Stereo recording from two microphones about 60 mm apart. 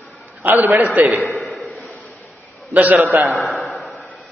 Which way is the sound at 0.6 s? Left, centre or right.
Right.